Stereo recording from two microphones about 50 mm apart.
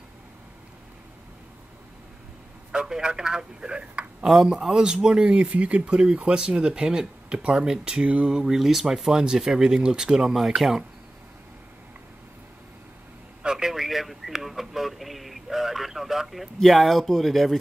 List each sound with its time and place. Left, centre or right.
2.7 s speech: centre
13.4 s a sound: centre
16.5 s speech: centre